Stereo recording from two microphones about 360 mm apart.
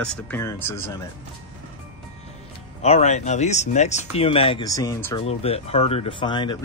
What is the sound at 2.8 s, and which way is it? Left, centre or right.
Speech, centre.